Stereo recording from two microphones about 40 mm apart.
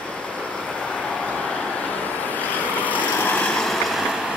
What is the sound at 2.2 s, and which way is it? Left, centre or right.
Vehicle, left.